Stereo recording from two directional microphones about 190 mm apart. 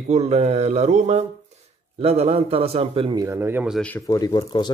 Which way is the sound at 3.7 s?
10° left (ahead or behind).